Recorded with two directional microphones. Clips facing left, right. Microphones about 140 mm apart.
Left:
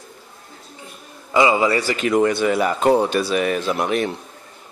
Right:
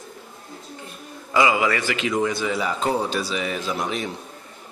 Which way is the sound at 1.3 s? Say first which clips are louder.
Left 3 dB; 25° left (ahead or behind).